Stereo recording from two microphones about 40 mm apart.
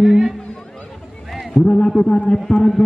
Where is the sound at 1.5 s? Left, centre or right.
Centre.